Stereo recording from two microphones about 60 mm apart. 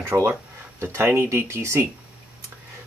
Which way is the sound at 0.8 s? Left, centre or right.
Right.